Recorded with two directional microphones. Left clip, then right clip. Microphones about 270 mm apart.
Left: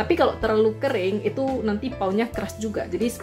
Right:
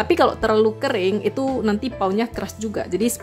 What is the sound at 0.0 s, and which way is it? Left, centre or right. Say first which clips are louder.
A woman's voice: right 3 dB; right.